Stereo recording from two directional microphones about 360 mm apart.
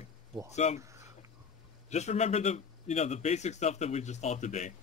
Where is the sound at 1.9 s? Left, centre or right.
Centre.